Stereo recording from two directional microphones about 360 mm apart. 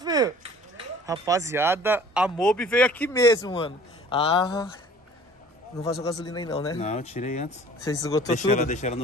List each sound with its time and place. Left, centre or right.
0.0 s a sound: centre
1.0 s speech: centre
5.8 s speech: centre